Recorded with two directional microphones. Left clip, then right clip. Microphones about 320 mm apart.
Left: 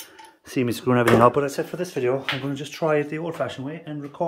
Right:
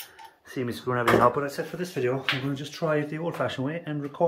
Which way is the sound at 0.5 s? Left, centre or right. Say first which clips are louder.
Left 7 dB; left.